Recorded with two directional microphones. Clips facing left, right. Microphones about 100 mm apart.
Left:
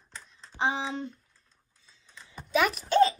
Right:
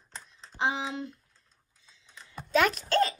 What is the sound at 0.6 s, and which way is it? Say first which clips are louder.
Speech: left 1 dB; 30° left (ahead or behind).